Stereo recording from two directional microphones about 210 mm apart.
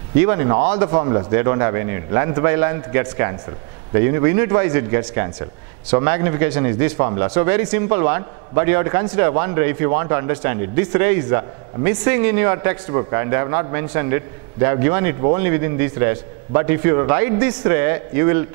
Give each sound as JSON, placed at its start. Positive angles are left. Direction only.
{"t": 0.1, "sound": "a man's voice", "side_deg": -15}